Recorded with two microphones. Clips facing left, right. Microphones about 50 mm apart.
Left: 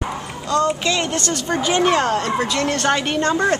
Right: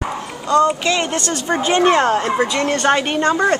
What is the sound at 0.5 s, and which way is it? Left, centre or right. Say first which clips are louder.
A woman's voice: right 4 dB; centre.